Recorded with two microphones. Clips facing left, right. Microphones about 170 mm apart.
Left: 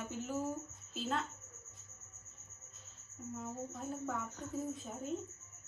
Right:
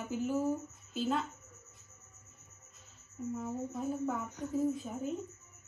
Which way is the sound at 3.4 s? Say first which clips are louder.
Right 4 dB; centre (ahead or behind).